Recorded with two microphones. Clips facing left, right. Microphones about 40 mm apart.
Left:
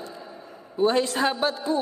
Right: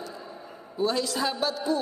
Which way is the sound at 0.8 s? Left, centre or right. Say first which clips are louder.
Left 5 dB; left.